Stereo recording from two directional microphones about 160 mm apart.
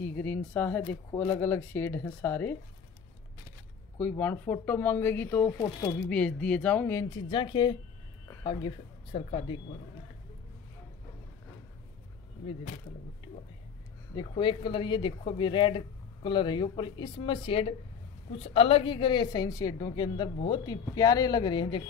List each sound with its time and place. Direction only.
0.0 s speech: 10° left (ahead or behind)
4.0 s speech: 10° left (ahead or behind); by 9.6 s 35° left (ahead or behind)
14.1 s a woman's voice: 30° left (ahead or behind)